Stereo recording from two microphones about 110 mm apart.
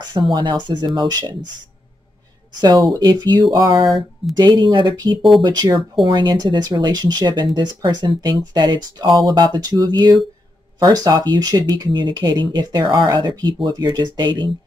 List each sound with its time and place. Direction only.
0.0 s speech: 40° right (ahead or behind)
2.6 s speech: 35° right (ahead or behind)